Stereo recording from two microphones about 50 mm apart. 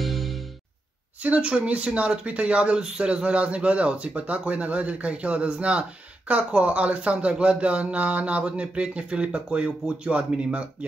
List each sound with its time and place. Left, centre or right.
0.0 s music: centre
1.2 s speech: right